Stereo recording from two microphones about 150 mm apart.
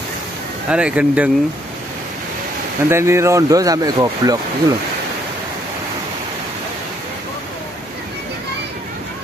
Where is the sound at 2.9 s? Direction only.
20° right (ahead or behind).